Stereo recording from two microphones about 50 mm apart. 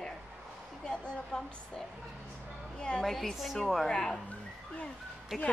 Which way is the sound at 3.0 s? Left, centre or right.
Centre.